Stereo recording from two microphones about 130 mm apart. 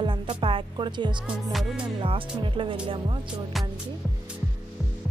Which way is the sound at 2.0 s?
40° right (ahead or behind).